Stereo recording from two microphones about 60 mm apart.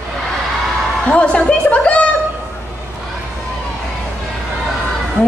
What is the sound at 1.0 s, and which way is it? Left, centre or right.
A woman's voice, centre.